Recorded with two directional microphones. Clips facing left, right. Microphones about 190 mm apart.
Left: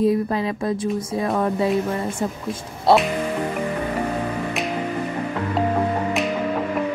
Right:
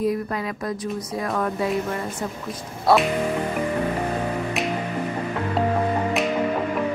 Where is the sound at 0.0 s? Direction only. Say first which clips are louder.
Left 5 dB; 25° left (ahead or behind).